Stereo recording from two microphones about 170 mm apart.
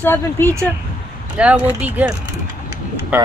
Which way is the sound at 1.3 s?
5° right (ahead or behind).